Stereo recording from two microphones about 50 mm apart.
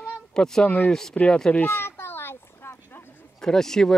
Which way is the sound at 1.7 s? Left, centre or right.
Left.